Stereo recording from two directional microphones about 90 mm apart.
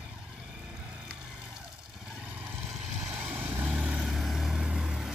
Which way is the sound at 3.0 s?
20° right (ahead or behind).